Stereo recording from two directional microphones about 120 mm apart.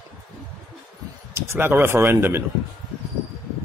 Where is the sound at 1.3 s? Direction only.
20° right (ahead or behind).